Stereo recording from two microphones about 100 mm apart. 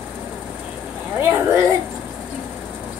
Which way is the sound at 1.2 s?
25° right (ahead or behind).